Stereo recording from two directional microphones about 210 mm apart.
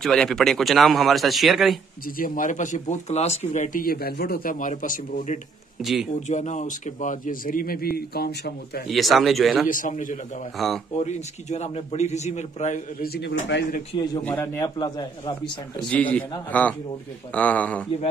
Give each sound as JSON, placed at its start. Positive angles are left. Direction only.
{"t": 0.0, "sound": "a man's voice", "side_deg": 0}
{"t": 2.0, "sound": "speech", "side_deg": 40}
{"t": 5.8, "sound": "a man's voice", "side_deg": 0}
{"t": 6.1, "sound": "a man's voice", "side_deg": 35}
{"t": 8.8, "sound": "a man's voice", "side_deg": 0}
{"t": 9.7, "sound": "speech", "side_deg": 40}
{"t": 10.6, "sound": "a man's voice", "side_deg": 0}
{"t": 11.0, "sound": "speech", "side_deg": 35}
{"t": 14.2, "sound": "a man's voice", "side_deg": 10}
{"t": 15.9, "sound": "a man's voice", "side_deg": 5}